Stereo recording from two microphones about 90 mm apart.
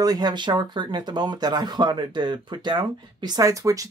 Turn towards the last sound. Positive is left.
turn(degrees=-40)  # may be behind; listen again after turning